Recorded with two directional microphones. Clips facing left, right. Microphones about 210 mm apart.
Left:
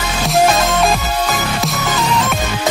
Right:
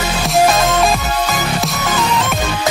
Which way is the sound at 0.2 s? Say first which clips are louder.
Even; centre (ahead or behind).